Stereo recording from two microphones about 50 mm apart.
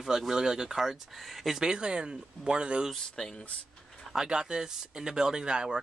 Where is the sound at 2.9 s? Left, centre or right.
Centre.